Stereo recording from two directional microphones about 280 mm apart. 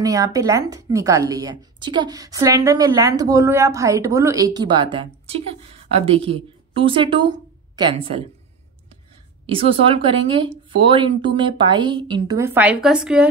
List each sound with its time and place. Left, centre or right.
0.0 s a woman's voice: centre
9.5 s a woman's voice: centre